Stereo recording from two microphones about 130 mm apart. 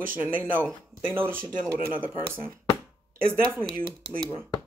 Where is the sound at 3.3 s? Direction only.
15° right (ahead or behind).